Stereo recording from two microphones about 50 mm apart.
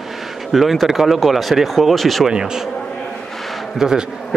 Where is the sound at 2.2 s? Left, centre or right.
Centre.